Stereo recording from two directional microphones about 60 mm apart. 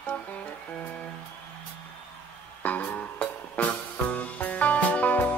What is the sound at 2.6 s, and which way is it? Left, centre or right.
Music, left.